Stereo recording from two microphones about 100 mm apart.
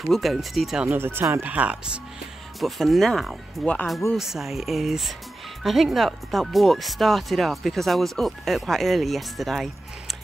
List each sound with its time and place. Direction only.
0.0 s speech: centre (ahead or behind)
0.8 s speech: 20° right (ahead or behind)
2.6 s speech: centre (ahead or behind)